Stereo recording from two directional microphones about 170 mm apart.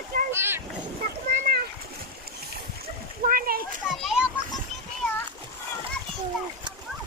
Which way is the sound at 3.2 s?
60° right (ahead or behind).